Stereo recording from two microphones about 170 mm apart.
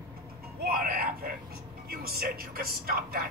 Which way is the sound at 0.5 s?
65° right (ahead or behind).